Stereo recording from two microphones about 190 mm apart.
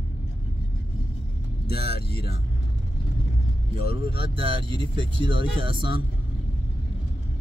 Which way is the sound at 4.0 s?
30° right (ahead or behind).